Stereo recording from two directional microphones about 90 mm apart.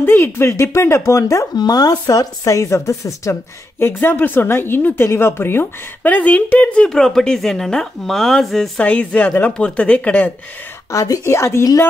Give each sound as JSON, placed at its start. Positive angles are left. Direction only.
{"t": 0.0, "sound": "speech", "side_deg": 25}
{"t": 1.5, "sound": "speech", "side_deg": 45}
{"t": 3.8, "sound": "a woman's voice", "side_deg": 25}
{"t": 10.9, "sound": "speech", "side_deg": 35}